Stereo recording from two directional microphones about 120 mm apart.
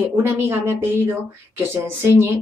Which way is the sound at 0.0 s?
20° right (ahead or behind).